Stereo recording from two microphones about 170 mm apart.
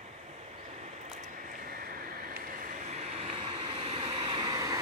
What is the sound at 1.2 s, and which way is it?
Vehicle, 50° right (ahead or behind).